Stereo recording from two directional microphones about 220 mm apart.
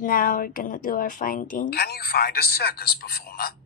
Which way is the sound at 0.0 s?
40° left (ahead or behind).